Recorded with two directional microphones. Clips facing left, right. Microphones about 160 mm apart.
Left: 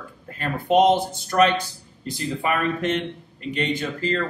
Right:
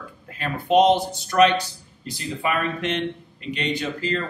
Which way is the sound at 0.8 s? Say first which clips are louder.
Even; 50° left (ahead or behind).